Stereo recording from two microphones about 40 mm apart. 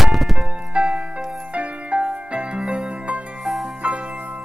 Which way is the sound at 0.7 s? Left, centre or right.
Right.